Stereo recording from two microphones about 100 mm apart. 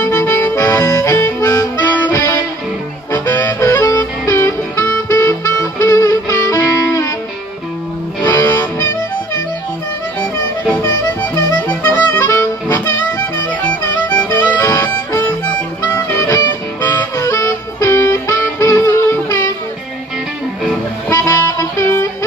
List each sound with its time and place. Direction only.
0.0 s accordion: 30° left (ahead or behind)
0.8 s music: 30° left (ahead or behind)
2.0 s music: 20° left (ahead or behind)
8.3 s music: 30° left (ahead or behind)
11.6 s music: 15° left (ahead or behind)
14.3 s music: 20° left (ahead or behind)
15.2 s harmonica: 25° left (ahead or behind)
16.2 s music: 30° left (ahead or behind)
21.1 s music: 30° left (ahead or behind)